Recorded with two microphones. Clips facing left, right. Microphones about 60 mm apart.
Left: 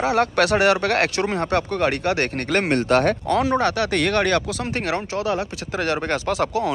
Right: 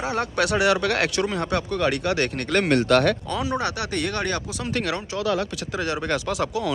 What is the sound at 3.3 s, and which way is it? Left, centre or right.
Speech, left.